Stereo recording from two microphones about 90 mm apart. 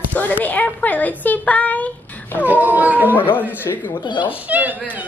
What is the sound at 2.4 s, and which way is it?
Speech, 20° right (ahead or behind).